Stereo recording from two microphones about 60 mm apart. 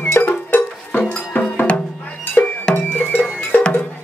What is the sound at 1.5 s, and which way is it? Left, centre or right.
Music, left.